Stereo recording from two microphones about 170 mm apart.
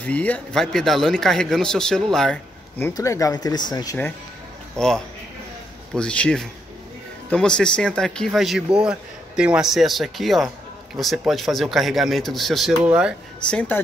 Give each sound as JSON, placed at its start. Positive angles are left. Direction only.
{"t": 0.0, "sound": "speech", "side_deg": 10}
{"t": 2.8, "sound": "speech", "side_deg": 20}
{"t": 4.7, "sound": "speech", "side_deg": 5}
{"t": 13.5, "sound": "speech", "side_deg": 5}